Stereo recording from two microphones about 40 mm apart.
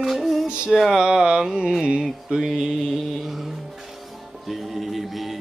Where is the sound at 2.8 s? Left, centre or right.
Centre.